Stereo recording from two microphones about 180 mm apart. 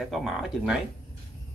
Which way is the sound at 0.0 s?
Centre (ahead or behind).